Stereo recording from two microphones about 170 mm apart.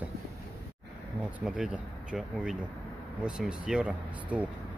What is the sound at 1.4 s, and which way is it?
Speech, 5° right (ahead or behind).